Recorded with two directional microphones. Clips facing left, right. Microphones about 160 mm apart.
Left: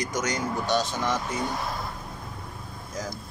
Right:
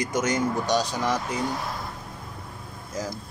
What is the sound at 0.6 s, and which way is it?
Speech, 40° right (ahead or behind).